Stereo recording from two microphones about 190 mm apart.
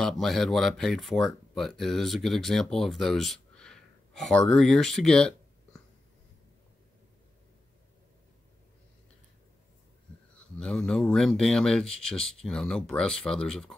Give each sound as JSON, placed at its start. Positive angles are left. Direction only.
{"t": 0.0, "sound": "speech", "side_deg": 0}
{"t": 10.6, "sound": "speech", "side_deg": 5}